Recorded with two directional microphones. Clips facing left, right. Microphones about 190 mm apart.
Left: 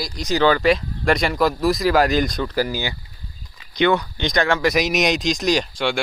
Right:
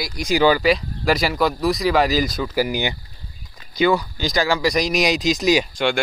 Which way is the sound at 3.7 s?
5° right (ahead or behind).